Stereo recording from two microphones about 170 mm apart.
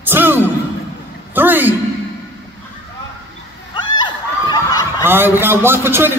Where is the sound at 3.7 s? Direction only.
25° left (ahead or behind).